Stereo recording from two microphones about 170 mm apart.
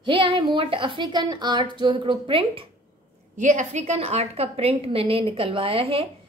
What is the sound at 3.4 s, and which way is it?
A woman's voice, 45° right (ahead or behind).